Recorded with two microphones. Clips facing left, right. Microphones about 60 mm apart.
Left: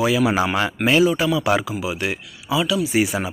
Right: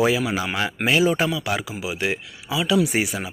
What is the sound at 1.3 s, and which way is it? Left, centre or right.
Speech, centre.